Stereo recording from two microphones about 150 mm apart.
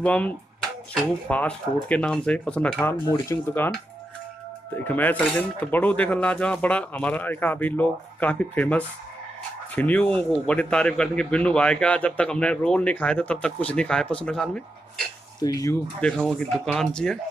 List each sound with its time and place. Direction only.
0.0 s a man's voice: 10° left (ahead or behind)
3.1 s a man's voice: 20° left (ahead or behind)
4.7 s a man's voice: 10° left (ahead or behind)
15.4 s speech: 25° left (ahead or behind)
16.0 s speech: 5° left (ahead or behind)